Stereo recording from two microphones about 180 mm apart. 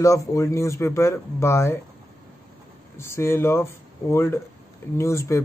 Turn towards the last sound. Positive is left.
turn(degrees=15)  # may be behind; listen again after turning